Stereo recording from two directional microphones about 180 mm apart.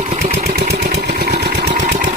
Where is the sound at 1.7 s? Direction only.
45° right (ahead or behind).